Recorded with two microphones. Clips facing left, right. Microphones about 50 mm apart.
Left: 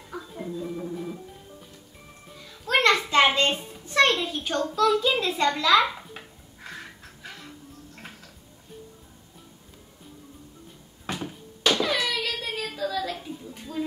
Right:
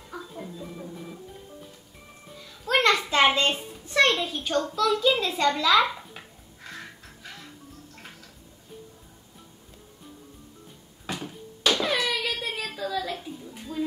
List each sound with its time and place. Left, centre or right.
0.1 s music: centre
2.8 s a sound: centre
3.4 s a child's voice: centre
6.1 s dishes: centre
11.1 s cupboard open or close: centre
11.7 s a sound: centre